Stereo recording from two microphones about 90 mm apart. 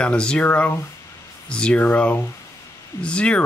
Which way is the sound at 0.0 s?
10° left (ahead or behind).